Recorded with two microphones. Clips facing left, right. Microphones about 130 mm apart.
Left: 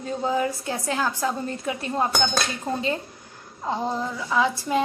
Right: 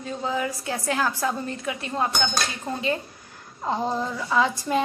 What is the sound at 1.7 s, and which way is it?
Speech, 35° left (ahead or behind).